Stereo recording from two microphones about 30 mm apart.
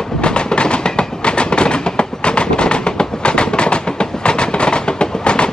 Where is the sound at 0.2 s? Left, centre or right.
Left.